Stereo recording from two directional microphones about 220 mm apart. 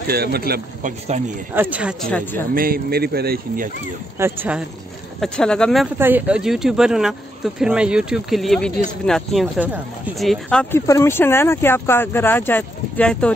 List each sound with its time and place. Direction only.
0.1 s speech: 45° right (ahead or behind)
1.5 s speech: 10° right (ahead or behind)
2.5 s speech: 40° right (ahead or behind)
4.2 s speech: 5° right (ahead or behind)
5.2 s speech: 5° left (ahead or behind)
5.9 s speech: 10° right (ahead or behind)